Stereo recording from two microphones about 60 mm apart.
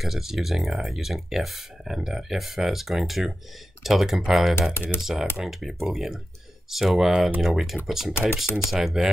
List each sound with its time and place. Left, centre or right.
0.0 s speech: centre
4.7 s speech: left
5.4 s speech: centre
8.1 s speech: left
8.6 s speech: centre